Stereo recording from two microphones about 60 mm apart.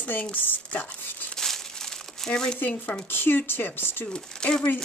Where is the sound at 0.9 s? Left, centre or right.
Centre.